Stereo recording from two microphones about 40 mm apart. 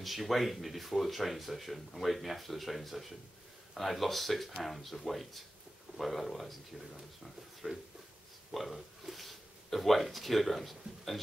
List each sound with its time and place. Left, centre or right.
0.0 s speech: centre
7.7 s speech: right
8.5 s speech: centre